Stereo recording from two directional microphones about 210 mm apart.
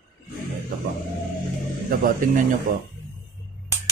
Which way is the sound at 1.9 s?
40° right (ahead or behind).